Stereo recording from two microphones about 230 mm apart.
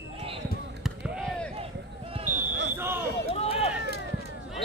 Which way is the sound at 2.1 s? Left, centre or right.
Right.